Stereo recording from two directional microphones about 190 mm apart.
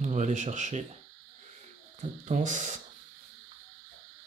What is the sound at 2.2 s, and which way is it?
Speech, 40° right (ahead or behind).